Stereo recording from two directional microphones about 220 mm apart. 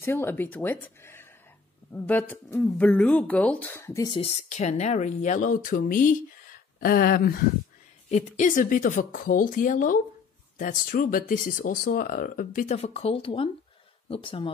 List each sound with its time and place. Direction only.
0.0 s a woman's voice: 10° left (ahead or behind); by 7.3 s 45° left (ahead or behind)
8.1 s speech: 35° left (ahead or behind)